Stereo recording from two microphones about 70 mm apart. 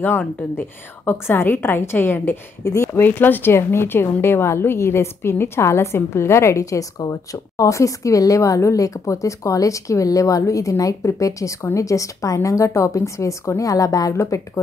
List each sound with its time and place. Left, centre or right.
0.0 s a woman's voice: left
2.6 s a woman's voice: left
3.1 s a woman's voice: left
14.1 s a woman's voice: left